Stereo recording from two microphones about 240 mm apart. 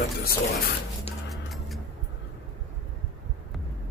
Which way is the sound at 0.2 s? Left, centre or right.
Left.